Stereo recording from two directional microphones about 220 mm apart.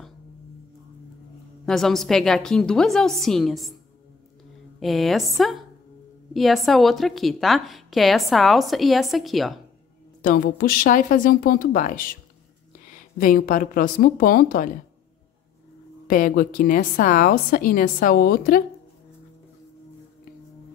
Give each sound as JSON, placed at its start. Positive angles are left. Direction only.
{"t": 1.7, "sound": "a woman's voice", "side_deg": 0}
{"t": 4.7, "sound": "a woman's voice", "side_deg": 0}
{"t": 10.2, "sound": "a woman's voice", "side_deg": 40}
{"t": 13.2, "sound": "a woman's voice", "side_deg": 40}
{"t": 16.1, "sound": "a woman's voice", "side_deg": 40}